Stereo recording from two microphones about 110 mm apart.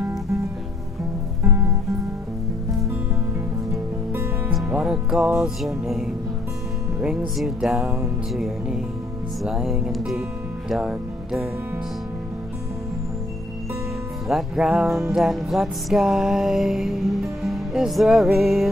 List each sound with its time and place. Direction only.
3.7 s music: 25° right (ahead or behind)
4.6 s music: 10° right (ahead or behind)
7.0 s music: 10° right (ahead or behind)
10.7 s speech: 5° right (ahead or behind)
14.2 s music: centre (ahead or behind)